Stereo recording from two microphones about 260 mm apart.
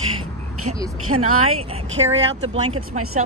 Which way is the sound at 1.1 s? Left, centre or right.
Right.